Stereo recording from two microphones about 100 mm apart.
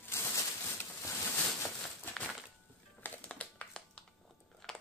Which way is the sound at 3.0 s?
15° left (ahead or behind).